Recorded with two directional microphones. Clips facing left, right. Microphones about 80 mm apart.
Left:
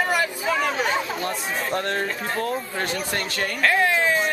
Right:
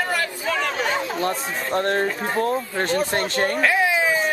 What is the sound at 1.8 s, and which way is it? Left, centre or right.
Speech, right.